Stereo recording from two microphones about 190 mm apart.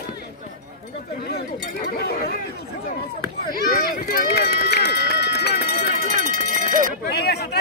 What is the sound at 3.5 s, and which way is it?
Speech, 50° left (ahead or behind).